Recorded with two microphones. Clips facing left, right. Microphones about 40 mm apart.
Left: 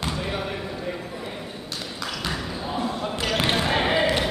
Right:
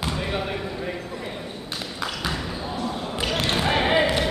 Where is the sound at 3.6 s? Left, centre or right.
Centre.